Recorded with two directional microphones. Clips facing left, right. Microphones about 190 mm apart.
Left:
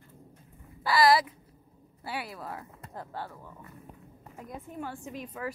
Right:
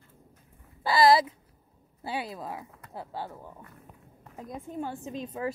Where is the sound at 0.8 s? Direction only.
25° right (ahead or behind).